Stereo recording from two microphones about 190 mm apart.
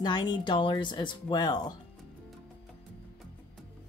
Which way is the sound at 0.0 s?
20° left (ahead or behind).